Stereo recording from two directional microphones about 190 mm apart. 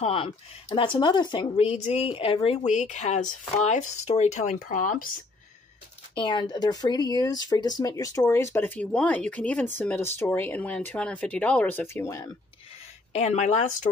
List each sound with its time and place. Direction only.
0.0 s speech: 30° left (ahead or behind); by 5.1 s 45° left (ahead or behind)
6.1 s speech: 25° left (ahead or behind)
13.1 s speech: 35° left (ahead or behind)